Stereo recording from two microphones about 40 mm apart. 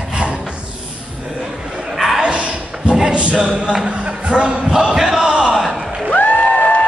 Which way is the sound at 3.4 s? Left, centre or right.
Centre.